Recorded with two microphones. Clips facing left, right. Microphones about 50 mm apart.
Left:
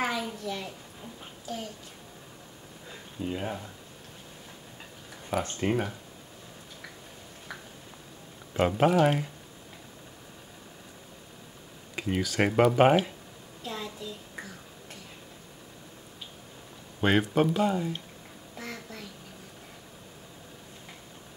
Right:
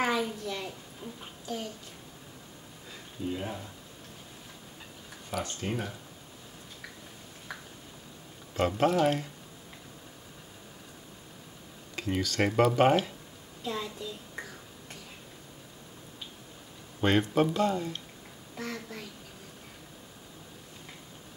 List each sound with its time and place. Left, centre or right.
0.0 s a sound: centre
3.3 s speech: centre
5.3 s speech: left
8.5 s speech: centre
11.9 s speech: centre
13.7 s a child's voice: centre
17.0 s speech: centre
18.6 s a sound: centre